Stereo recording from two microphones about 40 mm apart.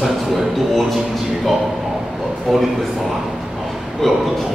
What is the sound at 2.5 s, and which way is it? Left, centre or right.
Speech, centre.